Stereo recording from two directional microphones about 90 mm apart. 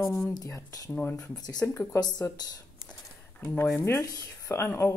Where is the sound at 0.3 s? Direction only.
40° left (ahead or behind).